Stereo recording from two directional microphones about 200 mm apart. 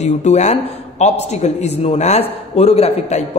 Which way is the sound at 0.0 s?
35° left (ahead or behind).